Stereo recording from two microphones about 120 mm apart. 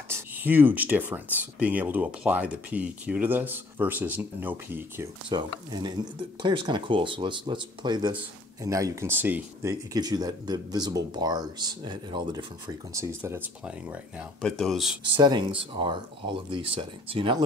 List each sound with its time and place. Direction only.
0.1 s speech: 15° right (ahead or behind)
5.3 s speech: 35° right (ahead or behind)
8.6 s speech: 25° right (ahead or behind)
9.9 s speech: 30° right (ahead or behind)
13.2 s speech: 15° right (ahead or behind)
14.4 s speech: 5° left (ahead or behind)
15.1 s speech: 40° right (ahead or behind)